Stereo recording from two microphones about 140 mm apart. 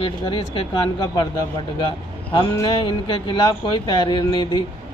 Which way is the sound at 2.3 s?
35° left (ahead or behind).